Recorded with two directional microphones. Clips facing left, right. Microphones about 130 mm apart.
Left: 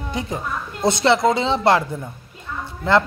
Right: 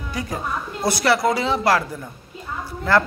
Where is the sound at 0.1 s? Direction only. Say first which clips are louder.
Even; 25° left (ahead or behind).